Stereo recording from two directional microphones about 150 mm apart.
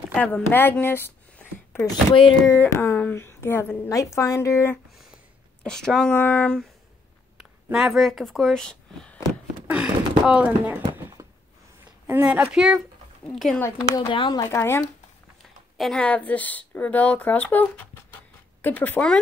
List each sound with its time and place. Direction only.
0.1 s a woman's voice: 10° left (ahead or behind)
5.6 s a woman's voice: 5° left (ahead or behind)
9.7 s speech: 10° right (ahead or behind)
11.8 s speech: 10° right (ahead or behind)
13.6 s speech: 20° left (ahead or behind)
13.9 s speech: 30° left (ahead or behind)
14.4 s speech: 20° left (ahead or behind)
15.8 s a woman's voice: 5° left (ahead or behind)